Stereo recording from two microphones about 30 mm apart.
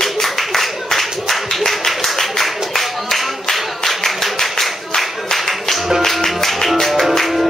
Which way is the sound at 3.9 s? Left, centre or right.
Centre.